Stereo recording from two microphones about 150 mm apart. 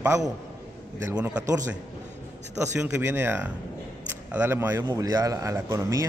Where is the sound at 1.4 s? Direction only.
20° right (ahead or behind).